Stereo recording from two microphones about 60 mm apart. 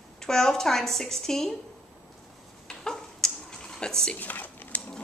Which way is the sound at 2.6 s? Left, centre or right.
Centre.